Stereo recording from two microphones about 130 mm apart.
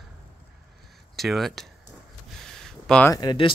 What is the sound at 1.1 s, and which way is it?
Speech, centre (ahead or behind).